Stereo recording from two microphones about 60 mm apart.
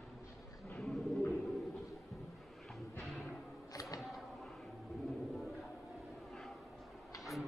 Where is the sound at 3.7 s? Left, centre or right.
Left.